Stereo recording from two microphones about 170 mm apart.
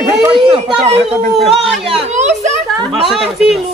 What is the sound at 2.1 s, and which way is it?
Children playing, 45° right (ahead or behind).